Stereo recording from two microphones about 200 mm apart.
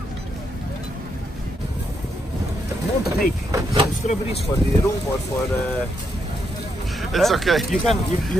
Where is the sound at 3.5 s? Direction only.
15° right (ahead or behind).